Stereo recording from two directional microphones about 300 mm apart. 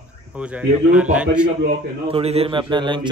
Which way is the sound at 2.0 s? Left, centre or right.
Centre.